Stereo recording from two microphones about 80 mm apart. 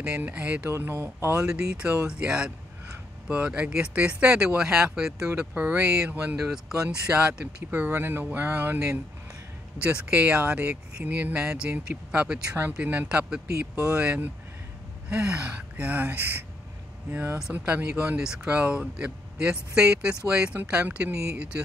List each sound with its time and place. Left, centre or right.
0.0 s speech: centre
0.7 s speech: right
1.3 s speech: centre
17.5 s speech: centre